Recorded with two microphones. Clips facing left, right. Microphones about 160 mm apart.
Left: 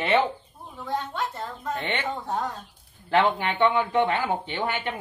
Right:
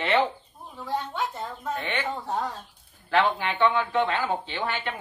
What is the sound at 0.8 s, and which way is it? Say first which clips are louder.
Speech: even; 10° right (ahead or behind).